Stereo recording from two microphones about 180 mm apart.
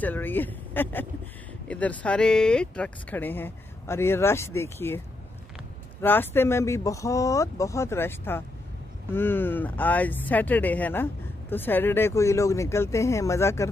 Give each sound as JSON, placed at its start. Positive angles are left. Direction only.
{"t": 0.0, "sound": "speech", "side_deg": 10}